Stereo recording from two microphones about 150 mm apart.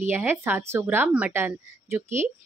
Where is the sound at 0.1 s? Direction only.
15° right (ahead or behind).